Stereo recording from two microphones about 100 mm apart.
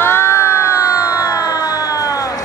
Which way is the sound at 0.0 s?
25° left (ahead or behind).